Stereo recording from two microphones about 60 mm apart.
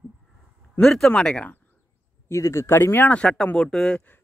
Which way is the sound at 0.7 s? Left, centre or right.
Centre.